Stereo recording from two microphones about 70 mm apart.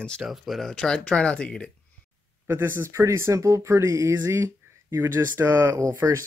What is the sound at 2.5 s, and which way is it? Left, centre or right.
Speech, right.